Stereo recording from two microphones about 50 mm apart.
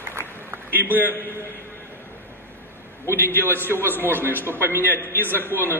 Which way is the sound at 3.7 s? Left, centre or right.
Left.